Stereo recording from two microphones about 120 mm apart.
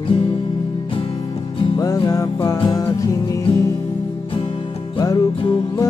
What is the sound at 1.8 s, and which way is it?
Music, 30° left (ahead or behind).